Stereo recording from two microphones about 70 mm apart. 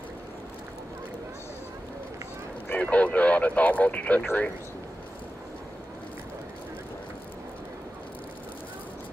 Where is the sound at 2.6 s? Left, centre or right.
Centre.